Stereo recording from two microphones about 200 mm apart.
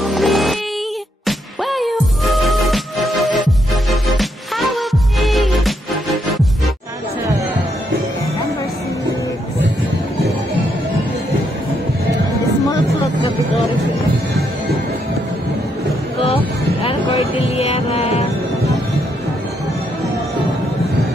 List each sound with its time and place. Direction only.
0.0 s music: centre (ahead or behind)
16.2 s music: 30° left (ahead or behind)